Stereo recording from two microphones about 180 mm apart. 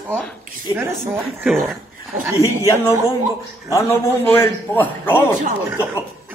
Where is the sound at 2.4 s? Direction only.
15° left (ahead or behind).